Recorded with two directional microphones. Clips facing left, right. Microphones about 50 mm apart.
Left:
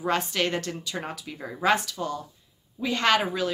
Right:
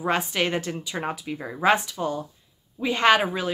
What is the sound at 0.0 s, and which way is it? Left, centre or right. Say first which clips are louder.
A woman's voice: right 2 dB; centre.